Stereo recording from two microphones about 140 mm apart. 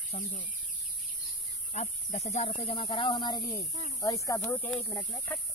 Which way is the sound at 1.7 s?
55° left (ahead or behind).